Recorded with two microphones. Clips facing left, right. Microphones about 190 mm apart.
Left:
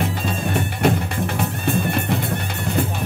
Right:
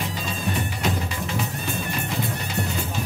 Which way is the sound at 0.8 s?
60° left (ahead or behind).